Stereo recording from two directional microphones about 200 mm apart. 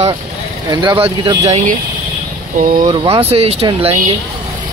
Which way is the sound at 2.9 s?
25° right (ahead or behind).